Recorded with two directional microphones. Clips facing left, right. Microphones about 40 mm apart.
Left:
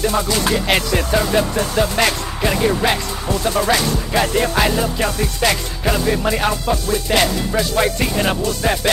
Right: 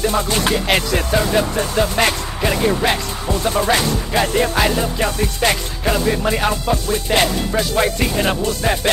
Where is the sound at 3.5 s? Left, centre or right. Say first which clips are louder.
Even; right.